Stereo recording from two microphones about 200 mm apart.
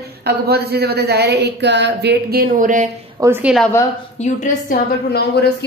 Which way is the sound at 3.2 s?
10° right (ahead or behind).